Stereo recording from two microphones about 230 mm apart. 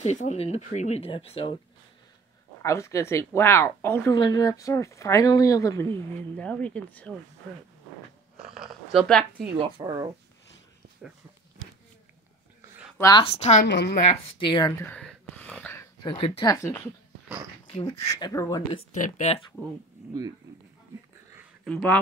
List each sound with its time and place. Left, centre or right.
0.0 s speech: left
2.6 s speech: centre
8.9 s speech: centre
9.6 s speech: centre
12.9 s speech: centre
13.7 s a woman's voice: left
13.9 s speech: left
18.9 s speech: left
21.6 s speech: centre